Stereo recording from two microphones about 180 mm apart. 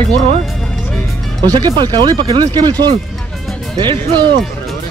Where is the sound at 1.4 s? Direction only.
20° right (ahead or behind).